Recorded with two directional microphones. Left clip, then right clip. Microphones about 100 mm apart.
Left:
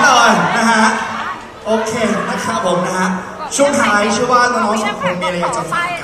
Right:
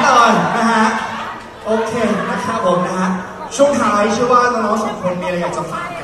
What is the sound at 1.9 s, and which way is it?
A man's voice, 20° left (ahead or behind).